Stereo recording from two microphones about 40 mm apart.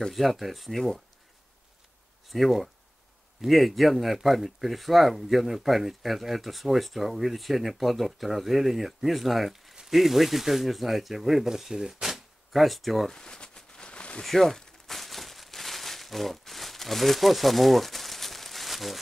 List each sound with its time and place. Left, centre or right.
0.1 s speech: centre
2.2 s speech: centre
12.6 s speech: centre
13.1 s a sound: centre
14.2 s crumpling: centre